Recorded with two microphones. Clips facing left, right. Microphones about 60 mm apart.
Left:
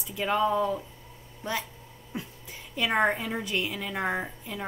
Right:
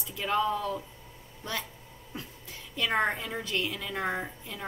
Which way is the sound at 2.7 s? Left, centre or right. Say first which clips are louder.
Left 3 dB; centre.